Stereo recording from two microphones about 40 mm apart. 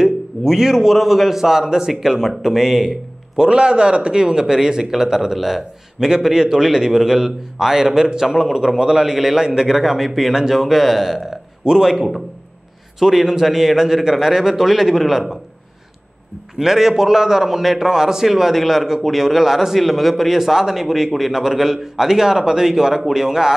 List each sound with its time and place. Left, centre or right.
0.4 s a man's voice: centre
3.4 s a man's voice: right; by 15.3 s centre
16.5 s a man's voice: centre